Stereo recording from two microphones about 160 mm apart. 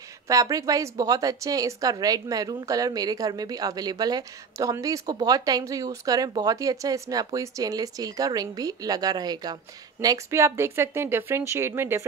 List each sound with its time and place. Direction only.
0.3 s speech: 20° right (ahead or behind)